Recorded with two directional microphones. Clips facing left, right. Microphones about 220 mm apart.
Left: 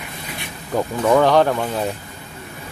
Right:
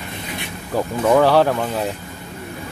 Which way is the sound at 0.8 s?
5° right (ahead or behind).